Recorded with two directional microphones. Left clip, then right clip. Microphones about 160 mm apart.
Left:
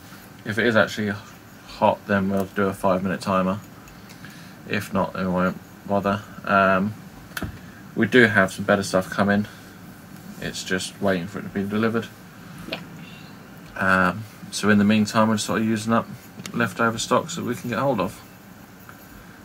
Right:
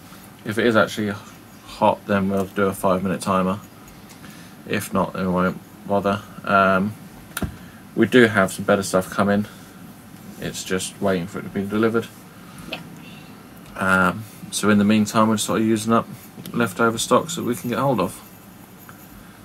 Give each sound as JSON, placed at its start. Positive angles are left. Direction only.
{"t": 0.5, "sound": "speech", "side_deg": -15}
{"t": 4.6, "sound": "speech", "side_deg": -20}
{"t": 7.4, "sound": "a sound", "side_deg": -15}
{"t": 8.0, "sound": "speech", "side_deg": -15}
{"t": 10.4, "sound": "speech", "side_deg": -15}
{"t": 13.7, "sound": "speech", "side_deg": -20}